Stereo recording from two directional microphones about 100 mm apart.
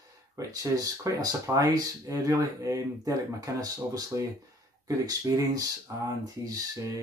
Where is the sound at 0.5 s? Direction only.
35° right (ahead or behind).